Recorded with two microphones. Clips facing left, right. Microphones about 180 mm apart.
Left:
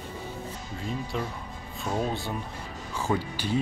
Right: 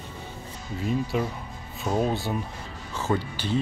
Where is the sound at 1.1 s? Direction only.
10° right (ahead or behind).